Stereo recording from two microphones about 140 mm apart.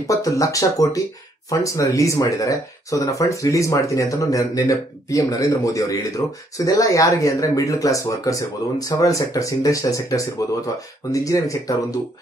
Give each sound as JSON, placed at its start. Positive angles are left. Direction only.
{"t": 0.0, "sound": "speech", "side_deg": 25}